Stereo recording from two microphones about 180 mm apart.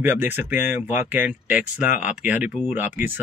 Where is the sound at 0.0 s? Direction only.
10° right (ahead or behind).